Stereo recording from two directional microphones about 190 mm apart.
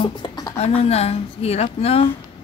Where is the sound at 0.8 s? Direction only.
35° left (ahead or behind).